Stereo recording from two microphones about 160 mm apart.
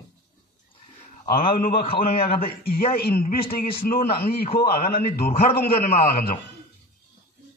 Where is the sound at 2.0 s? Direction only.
70° left (ahead or behind).